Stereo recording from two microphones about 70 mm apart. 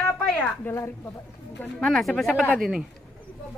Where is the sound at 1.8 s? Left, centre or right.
Centre.